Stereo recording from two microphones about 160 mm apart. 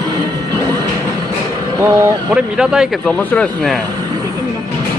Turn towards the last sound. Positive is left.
turn(degrees=5)  # may be behind; listen again after turning